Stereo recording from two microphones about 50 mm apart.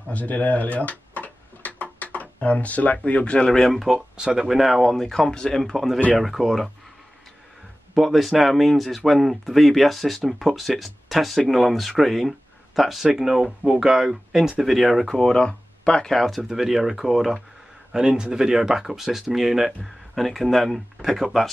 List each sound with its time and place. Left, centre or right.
0.1 s tick-tock: left
3.5 s speech: centre
4.2 s speech: centre
7.9 s speech: centre
15.1 s speech: centre
16.4 s speech: centre